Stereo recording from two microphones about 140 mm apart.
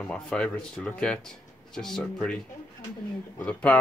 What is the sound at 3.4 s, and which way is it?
Speech, 10° left (ahead or behind).